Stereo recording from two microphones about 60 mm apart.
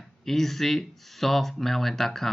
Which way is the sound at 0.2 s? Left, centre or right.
Centre.